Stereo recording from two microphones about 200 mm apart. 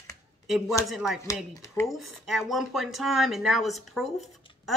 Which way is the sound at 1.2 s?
15° left (ahead or behind).